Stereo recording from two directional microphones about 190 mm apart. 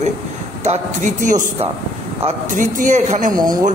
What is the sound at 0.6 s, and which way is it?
A man's voice, 40° right (ahead or behind).